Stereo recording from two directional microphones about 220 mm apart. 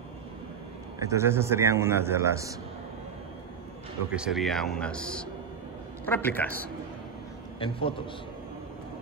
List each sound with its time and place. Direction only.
0.9 s a man's voice: 15° right (ahead or behind)
4.1 s a man's voice: 5° right (ahead or behind)
7.6 s a man's voice: 25° left (ahead or behind)